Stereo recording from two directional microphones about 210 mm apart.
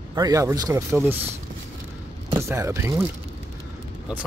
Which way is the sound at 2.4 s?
15° right (ahead or behind).